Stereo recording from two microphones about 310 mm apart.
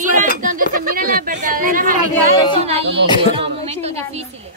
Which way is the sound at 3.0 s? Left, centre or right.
Centre.